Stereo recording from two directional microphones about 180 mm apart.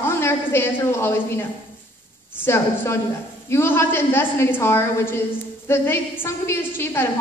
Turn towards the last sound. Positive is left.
turn(degrees=10)  # may be behind; listen again after turning